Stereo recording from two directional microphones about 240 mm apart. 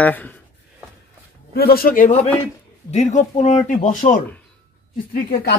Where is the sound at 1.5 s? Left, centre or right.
Left.